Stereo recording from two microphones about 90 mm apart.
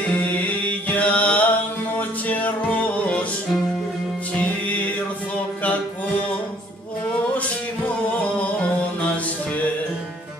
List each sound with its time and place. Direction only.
0.2 s music: 15° left (ahead or behind)
4.6 s music: 15° left (ahead or behind)
7.3 s music: 15° left (ahead or behind)